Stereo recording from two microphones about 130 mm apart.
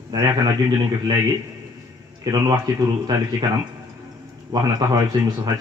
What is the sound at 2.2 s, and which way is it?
Speech, 30° right (ahead or behind).